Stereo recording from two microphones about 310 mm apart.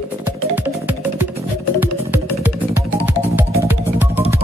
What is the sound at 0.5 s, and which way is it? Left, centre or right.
Music, centre.